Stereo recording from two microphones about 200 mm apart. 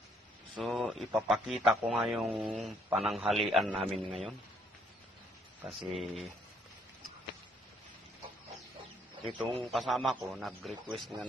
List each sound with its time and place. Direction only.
0.6 s a man's voice: centre (ahead or behind)
5.6 s a man's voice: 5° right (ahead or behind)
9.2 s a man's voice: centre (ahead or behind)